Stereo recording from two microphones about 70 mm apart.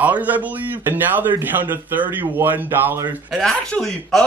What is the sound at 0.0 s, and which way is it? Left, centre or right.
A man's voice, right.